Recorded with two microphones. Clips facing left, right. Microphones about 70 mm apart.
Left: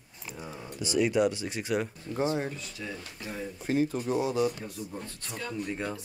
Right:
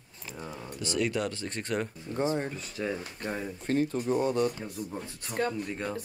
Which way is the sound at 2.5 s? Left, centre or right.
Right.